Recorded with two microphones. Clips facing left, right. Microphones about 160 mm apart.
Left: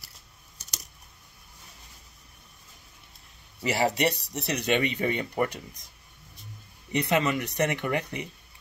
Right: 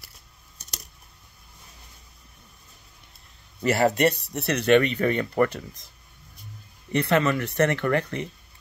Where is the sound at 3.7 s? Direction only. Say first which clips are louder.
Right 4 dB; 50° right (ahead or behind).